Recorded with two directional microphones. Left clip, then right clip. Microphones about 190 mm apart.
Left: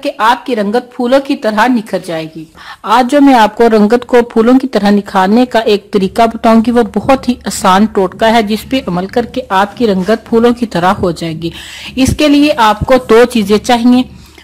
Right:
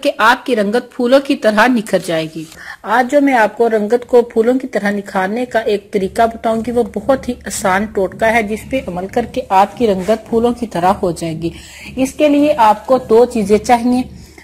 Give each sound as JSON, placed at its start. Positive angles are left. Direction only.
{"t": 0.0, "sound": "speech", "side_deg": -10}
{"t": 3.0, "sound": "a woman's voice", "side_deg": 25}
{"t": 5.3, "sound": "a woman's voice", "side_deg": 25}
{"t": 9.0, "sound": "a woman's voice", "side_deg": 15}